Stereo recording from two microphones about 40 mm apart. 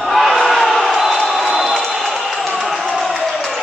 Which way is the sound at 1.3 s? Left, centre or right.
Centre.